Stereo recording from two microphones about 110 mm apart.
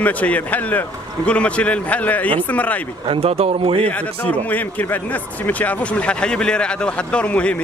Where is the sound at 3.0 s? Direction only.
60° right (ahead or behind).